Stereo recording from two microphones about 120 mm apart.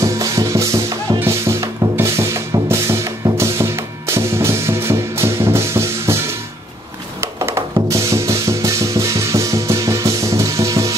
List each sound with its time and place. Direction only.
0.0 s music: 30° right (ahead or behind)
7.2 s music: 20° right (ahead or behind)